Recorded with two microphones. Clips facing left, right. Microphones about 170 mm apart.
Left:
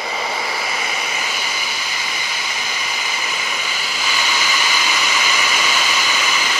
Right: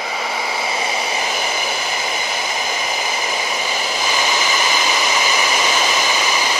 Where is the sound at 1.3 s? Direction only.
50° right (ahead or behind).